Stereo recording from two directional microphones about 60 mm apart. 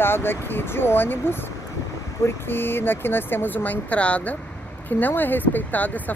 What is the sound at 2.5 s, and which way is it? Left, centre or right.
Speech, left.